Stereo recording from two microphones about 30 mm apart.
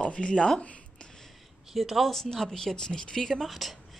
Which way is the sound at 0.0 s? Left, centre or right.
Left.